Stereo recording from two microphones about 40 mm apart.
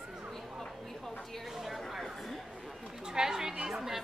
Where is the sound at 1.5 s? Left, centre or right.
Centre.